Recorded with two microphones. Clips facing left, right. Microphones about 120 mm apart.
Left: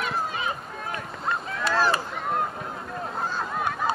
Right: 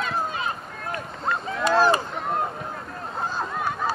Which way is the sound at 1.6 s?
15° right (ahead or behind).